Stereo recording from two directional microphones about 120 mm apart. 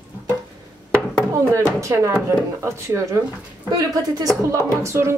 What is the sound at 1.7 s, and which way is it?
A woman's voice, 25° right (ahead or behind).